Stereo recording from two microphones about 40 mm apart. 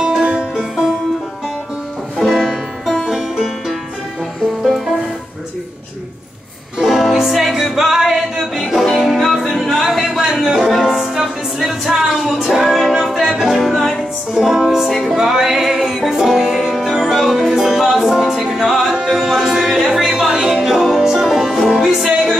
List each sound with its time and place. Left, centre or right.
0.2 s music: right
2.1 s music: centre
6.8 s music: centre
8.9 s music: centre
10.2 s music: centre
18.9 s singing: centre
19.9 s a sound: centre
20.6 s music: centre